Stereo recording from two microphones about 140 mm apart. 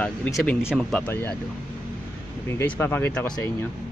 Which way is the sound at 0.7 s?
10° left (ahead or behind).